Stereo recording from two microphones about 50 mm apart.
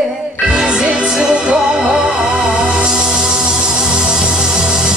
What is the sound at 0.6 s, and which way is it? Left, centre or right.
Music, centre.